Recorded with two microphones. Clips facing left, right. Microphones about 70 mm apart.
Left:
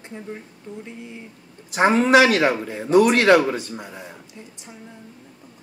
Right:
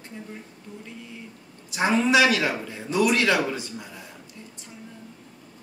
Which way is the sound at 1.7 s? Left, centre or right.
Left.